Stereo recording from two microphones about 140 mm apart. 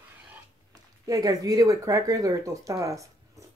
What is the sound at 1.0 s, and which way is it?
Speech, 25° right (ahead or behind).